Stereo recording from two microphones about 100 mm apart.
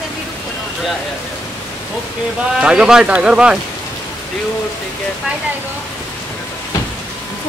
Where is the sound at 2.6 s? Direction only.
10° right (ahead or behind).